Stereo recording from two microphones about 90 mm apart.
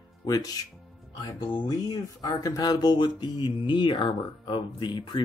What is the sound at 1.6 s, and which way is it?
Speech, 50° left (ahead or behind).